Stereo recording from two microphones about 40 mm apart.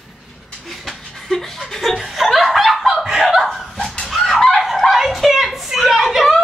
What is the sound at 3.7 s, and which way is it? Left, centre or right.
Chicken, centre.